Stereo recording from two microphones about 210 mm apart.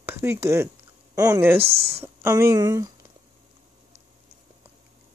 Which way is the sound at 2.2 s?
15° right (ahead or behind).